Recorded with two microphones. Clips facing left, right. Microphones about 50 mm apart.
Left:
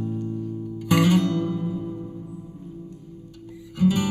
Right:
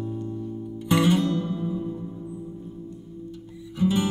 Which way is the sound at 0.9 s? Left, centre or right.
Left.